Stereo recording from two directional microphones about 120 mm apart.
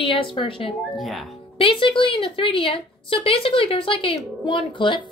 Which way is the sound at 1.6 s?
45° left (ahead or behind).